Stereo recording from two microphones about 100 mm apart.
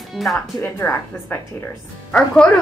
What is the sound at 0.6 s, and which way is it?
Speech, 25° left (ahead or behind).